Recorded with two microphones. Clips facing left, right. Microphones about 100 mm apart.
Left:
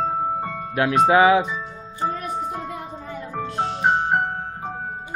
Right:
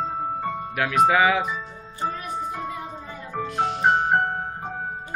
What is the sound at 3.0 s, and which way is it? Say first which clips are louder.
Music: left 3 dB; 35° left (ahead or behind).